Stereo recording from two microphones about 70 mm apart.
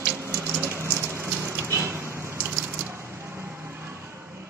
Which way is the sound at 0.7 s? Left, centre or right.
Right.